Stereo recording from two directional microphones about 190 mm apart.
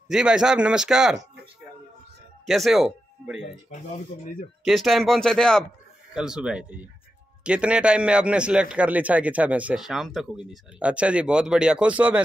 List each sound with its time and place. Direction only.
0.1 s a man's voice: 5° right (ahead or behind)
2.4 s speech: centre (ahead or behind)
4.2 s speech: 45° left (ahead or behind)
4.6 s a man's voice: centre (ahead or behind)